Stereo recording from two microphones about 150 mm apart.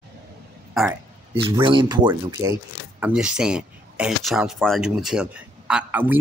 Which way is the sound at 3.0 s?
5° right (ahead or behind).